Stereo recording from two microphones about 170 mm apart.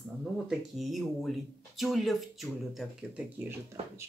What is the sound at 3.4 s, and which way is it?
Speech, 15° right (ahead or behind).